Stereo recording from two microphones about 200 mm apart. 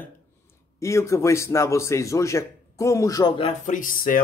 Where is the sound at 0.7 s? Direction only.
15° left (ahead or behind).